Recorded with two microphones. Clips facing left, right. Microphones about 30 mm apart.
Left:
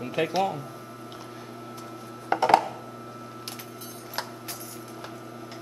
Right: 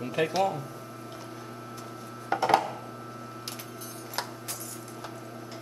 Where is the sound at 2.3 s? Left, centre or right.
Left.